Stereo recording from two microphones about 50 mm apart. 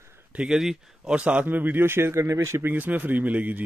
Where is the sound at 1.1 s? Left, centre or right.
Right.